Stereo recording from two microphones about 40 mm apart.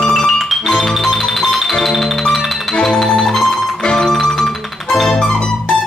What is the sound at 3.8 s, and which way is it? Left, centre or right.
Music, centre.